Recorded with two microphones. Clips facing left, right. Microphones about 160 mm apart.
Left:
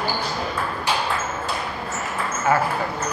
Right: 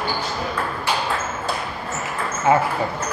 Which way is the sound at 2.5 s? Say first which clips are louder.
Right 3 dB; 20° right (ahead or behind).